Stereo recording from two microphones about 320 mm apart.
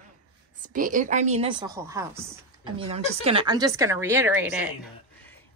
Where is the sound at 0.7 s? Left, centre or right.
Right; by 4.7 s centre.